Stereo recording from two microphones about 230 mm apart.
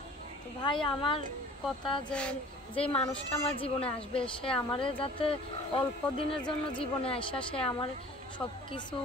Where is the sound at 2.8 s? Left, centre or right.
Left.